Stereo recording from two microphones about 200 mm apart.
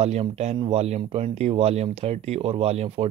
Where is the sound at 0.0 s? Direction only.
35° right (ahead or behind).